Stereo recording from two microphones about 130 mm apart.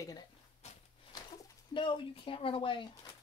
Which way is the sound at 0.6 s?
60° left (ahead or behind).